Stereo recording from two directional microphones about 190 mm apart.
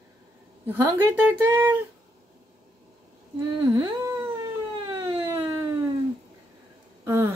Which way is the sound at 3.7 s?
15° right (ahead or behind).